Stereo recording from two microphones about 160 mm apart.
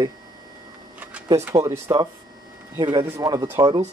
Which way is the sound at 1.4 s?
20° right (ahead or behind).